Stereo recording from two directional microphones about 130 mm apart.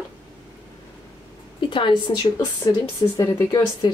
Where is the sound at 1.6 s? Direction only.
40° left (ahead or behind).